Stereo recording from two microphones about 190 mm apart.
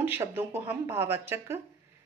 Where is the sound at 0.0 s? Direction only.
10° right (ahead or behind).